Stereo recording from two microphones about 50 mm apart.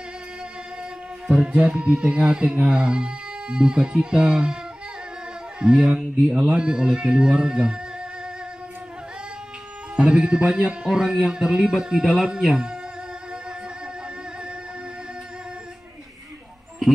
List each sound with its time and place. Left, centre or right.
1.2 s music: centre
1.7 s a man's voice: centre
5.6 s a man's voice: centre
9.9 s a man's voice: right